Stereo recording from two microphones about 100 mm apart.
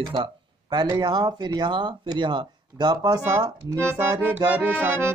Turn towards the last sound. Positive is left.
turn(degrees=-20)  # may be behind; listen again after turning